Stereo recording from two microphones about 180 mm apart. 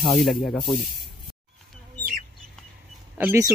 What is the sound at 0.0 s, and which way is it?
Speech, centre (ahead or behind).